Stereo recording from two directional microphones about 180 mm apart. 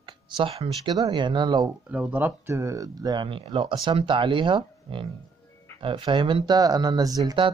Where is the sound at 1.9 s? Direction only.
10° right (ahead or behind).